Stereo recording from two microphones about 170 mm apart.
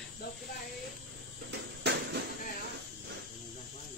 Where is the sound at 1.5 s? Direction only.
80° right.